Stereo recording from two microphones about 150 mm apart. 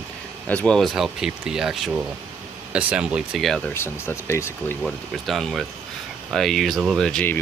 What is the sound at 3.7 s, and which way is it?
Speech, 15° left (ahead or behind).